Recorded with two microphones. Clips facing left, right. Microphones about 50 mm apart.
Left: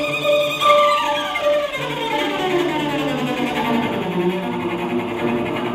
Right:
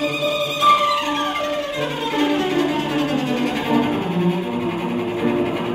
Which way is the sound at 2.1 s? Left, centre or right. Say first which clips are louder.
Even; centre.